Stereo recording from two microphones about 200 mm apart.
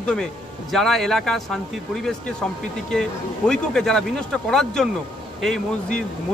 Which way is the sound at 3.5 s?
5° left (ahead or behind).